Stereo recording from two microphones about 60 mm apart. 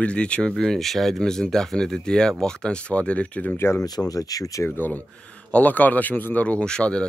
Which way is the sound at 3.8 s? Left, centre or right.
Left.